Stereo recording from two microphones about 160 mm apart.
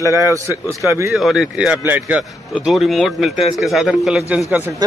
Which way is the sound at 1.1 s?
Centre (ahead or behind).